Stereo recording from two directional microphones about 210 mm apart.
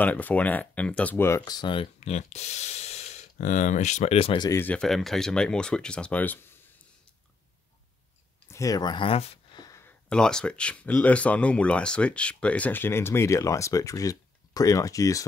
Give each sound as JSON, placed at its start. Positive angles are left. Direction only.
{"t": 0.0, "sound": "speech", "side_deg": 10}
{"t": 4.5, "sound": "speech", "side_deg": 10}
{"t": 8.5, "sound": "speech", "side_deg": 15}